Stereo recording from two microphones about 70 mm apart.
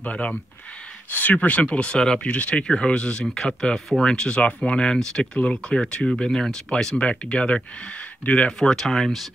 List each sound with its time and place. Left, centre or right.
0.0 s speech: centre
8.5 s speech: centre